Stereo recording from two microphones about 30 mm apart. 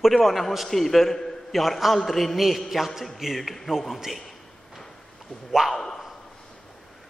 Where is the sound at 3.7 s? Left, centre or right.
Centre.